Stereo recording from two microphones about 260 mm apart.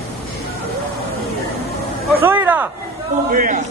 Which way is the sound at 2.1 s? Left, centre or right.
Centre.